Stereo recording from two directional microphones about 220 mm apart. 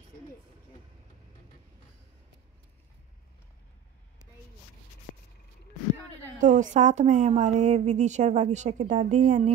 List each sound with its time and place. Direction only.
6.4 s a woman's voice: 35° right (ahead or behind)